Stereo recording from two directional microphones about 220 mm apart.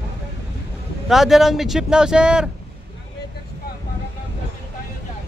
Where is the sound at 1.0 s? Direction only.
Centre (ahead or behind).